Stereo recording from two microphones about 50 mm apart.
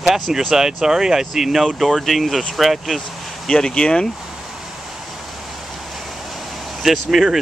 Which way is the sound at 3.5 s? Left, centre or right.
Centre.